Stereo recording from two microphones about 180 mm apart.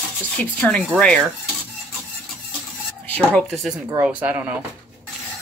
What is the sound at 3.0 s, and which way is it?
Speech, 5° left (ahead or behind).